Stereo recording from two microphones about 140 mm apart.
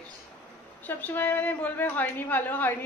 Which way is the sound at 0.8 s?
15° left (ahead or behind).